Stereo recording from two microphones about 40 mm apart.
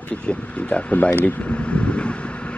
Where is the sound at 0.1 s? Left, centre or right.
Left.